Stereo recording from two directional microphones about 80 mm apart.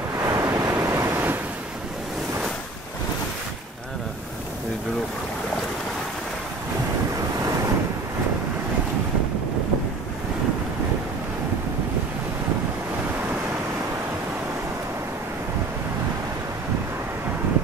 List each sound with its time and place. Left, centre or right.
0.2 s waves: right